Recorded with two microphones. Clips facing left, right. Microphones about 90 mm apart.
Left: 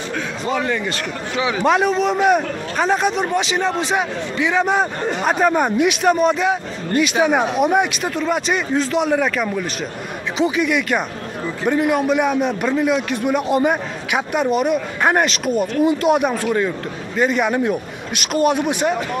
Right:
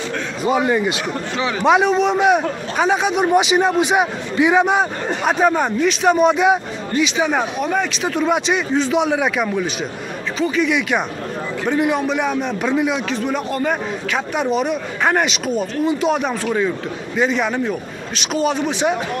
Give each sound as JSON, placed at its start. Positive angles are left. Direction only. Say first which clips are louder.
{"t": 0.4, "sound": "a man's voice", "louder": "right 5 dB", "side_deg": -15}
{"t": 1.4, "sound": "a man's voice", "louder": "right 1 dB", "side_deg": 0}
{"t": 4.6, "sound": "a man's voice", "louder": "right 1 dB", "side_deg": 0}
{"t": 6.1, "sound": "a man's voice", "louder": "right 3 dB", "side_deg": -5}
{"t": 7.0, "sound": "speech", "louder": "left 2 dB", "side_deg": 5}
{"t": 8.0, "sound": "a man's voice", "louder": "right 2 dB", "side_deg": 0}
{"t": 10.3, "sound": "speech", "louder": "left 1 dB", "side_deg": 20}
{"t": 10.6, "sound": "a man's voice", "louder": "right 1 dB", "side_deg": 0}